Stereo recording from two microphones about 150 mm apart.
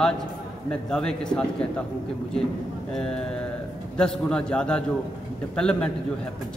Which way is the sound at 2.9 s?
5° left (ahead or behind).